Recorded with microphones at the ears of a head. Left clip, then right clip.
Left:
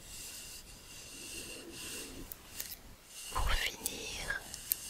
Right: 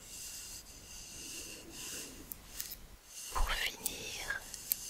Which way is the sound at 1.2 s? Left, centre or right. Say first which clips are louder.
Left 3 dB; centre.